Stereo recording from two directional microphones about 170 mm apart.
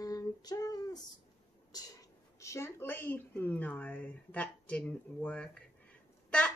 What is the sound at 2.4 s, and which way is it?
A woman's voice, 15° left (ahead or behind).